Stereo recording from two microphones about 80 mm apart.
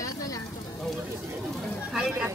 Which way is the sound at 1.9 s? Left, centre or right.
Centre.